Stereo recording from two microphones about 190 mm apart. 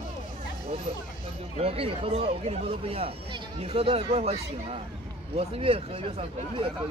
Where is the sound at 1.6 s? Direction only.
30° right (ahead or behind).